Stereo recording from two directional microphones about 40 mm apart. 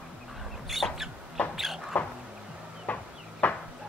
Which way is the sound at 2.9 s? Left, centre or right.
Left.